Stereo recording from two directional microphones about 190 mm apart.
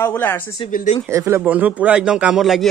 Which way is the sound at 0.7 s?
45° left (ahead or behind).